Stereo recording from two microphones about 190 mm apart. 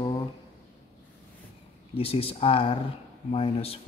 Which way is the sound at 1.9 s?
30° left (ahead or behind).